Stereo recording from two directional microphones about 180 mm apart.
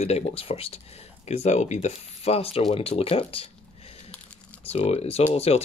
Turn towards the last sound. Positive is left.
turn(degrees=35)  # may be behind; listen again after turning